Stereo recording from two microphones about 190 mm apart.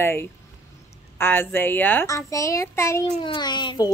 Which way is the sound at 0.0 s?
15° left (ahead or behind).